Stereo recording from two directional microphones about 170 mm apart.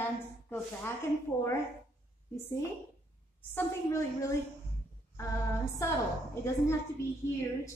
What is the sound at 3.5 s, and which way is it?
A woman's voice, 20° left (ahead or behind).